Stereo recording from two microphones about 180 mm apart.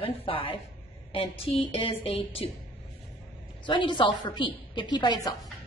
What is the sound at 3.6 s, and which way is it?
A woman's voice, 25° left (ahead or behind).